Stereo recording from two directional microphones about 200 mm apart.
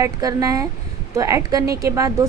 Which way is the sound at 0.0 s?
20° right (ahead or behind).